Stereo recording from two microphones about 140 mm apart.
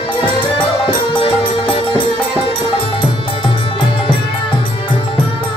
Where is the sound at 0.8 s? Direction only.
35° left (ahead or behind).